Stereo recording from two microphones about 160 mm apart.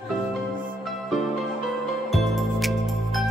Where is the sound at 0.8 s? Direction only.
Centre (ahead or behind).